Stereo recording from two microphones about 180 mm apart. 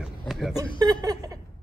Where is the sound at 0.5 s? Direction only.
20° right (ahead or behind).